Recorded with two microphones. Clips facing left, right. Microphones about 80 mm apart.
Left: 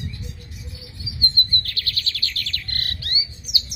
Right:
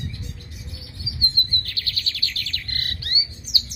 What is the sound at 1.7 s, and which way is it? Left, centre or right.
Bird, centre.